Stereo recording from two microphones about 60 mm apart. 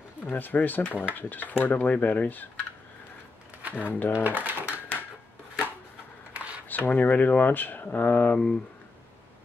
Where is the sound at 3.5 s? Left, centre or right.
Right.